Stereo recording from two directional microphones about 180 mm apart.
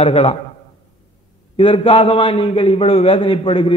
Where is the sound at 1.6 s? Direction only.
30° left (ahead or behind).